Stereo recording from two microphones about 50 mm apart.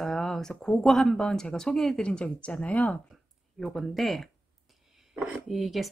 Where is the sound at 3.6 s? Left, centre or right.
Centre.